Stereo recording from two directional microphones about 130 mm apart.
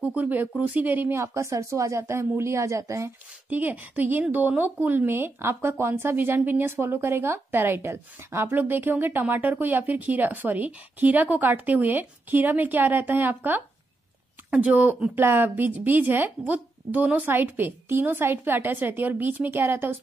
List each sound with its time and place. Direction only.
0.0 s speech: 10° right (ahead or behind)
3.4 s a woman's voice: 10° right (ahead or behind)